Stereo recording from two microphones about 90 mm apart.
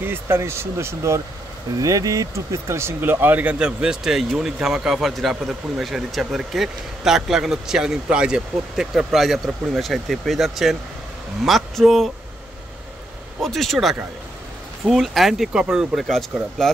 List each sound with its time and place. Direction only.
0.0 s speech: 25° right (ahead or behind); by 12.1 s centre (ahead or behind)
13.4 s speech: 5° left (ahead or behind)